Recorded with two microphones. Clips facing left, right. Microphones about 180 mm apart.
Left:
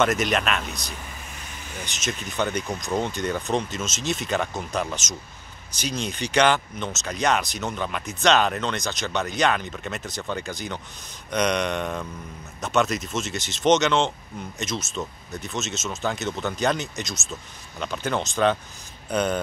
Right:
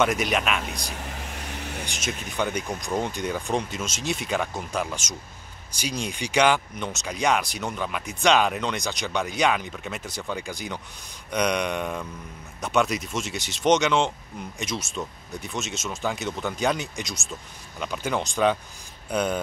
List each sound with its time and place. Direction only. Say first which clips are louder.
0.0 s speech: left 1 dB; 10° right (ahead or behind)
1.0 s vehicle: right 5 dB; 70° right (ahead or behind)
1.9 s speech: left 1 dB; 10° right (ahead or behind)